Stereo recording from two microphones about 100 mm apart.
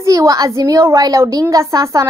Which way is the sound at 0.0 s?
35° right (ahead or behind).